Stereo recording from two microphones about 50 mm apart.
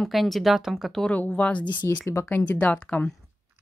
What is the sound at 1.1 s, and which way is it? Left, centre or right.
Speech, left.